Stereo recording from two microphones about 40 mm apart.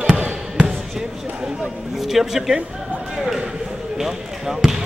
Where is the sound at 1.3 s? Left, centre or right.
Right.